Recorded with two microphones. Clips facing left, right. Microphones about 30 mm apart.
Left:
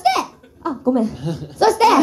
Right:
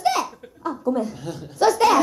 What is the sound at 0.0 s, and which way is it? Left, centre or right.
Laughter, left.